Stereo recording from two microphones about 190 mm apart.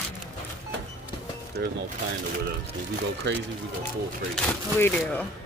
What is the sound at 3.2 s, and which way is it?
Speech, 75° right (ahead or behind).